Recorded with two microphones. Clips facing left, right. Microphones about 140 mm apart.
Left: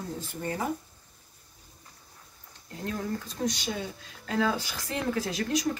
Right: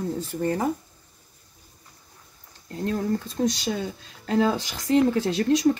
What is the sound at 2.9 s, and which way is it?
Speech, 35° right (ahead or behind).